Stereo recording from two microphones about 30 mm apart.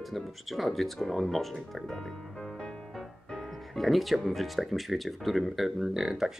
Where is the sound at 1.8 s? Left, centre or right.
Centre.